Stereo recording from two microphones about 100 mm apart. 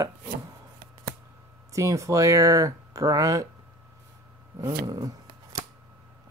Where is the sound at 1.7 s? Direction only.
30° right (ahead or behind).